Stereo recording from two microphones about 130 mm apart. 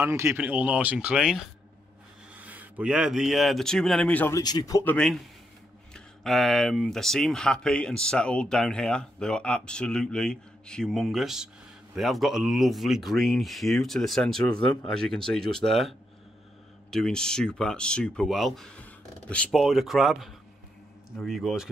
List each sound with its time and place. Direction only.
0.0 s speech: 20° right (ahead or behind); by 4.3 s 10° left (ahead or behind)
4.3 s speech: 30° left (ahead or behind)
4.8 s speech: 5° left (ahead or behind)
16.9 s speech: 5° left (ahead or behind)